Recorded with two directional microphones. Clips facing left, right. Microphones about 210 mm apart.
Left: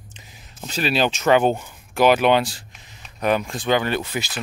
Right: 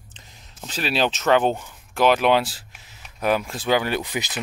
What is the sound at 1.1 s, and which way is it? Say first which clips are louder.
Speech: left 2 dB; 10° left (ahead or behind).